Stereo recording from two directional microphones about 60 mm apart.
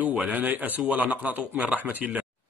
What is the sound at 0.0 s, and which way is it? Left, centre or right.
Speech, right.